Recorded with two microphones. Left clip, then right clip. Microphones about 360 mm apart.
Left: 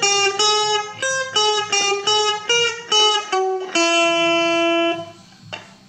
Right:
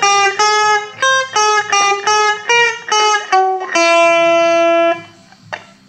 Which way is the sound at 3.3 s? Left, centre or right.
Centre.